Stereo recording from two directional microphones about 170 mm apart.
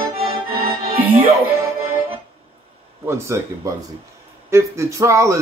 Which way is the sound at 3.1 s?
15° right (ahead or behind).